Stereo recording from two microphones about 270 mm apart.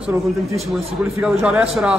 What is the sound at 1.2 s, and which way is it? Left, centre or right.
Speech, centre.